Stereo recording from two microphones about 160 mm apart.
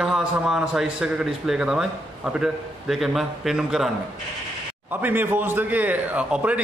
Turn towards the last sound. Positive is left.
turn(degrees=-10)  # may be behind; listen again after turning